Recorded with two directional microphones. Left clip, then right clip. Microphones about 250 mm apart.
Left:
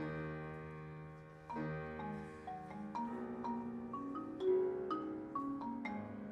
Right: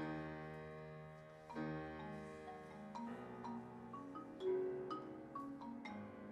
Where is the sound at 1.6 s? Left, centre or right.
Right.